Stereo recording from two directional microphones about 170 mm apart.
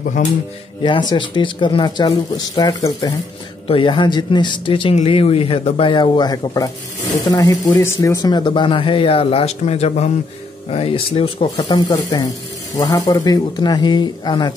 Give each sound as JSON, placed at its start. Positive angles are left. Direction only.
{"t": 0.0, "sound": "speech", "side_deg": 50}
{"t": 0.8, "sound": "speech", "side_deg": 30}
{"t": 11.6, "sound": "speech", "side_deg": 20}